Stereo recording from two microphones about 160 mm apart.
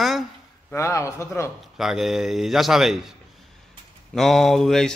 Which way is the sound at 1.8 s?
Centre (ahead or behind).